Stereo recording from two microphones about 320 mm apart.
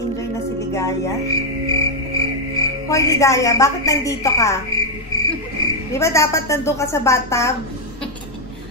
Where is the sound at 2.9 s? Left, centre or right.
Centre.